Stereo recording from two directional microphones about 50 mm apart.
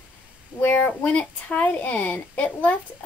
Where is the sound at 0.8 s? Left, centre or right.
Left.